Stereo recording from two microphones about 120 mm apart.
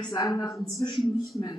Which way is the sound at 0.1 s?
30° left (ahead or behind).